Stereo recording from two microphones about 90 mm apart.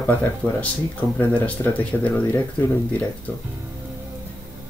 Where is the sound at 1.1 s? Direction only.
20° left (ahead or behind).